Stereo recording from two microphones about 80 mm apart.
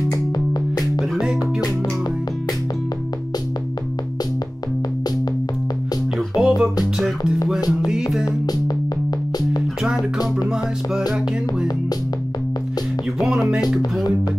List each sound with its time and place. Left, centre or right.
0.5 s music: left
6.1 s music: centre
8.3 s music: left
9.8 s music: centre
13.2 s music: centre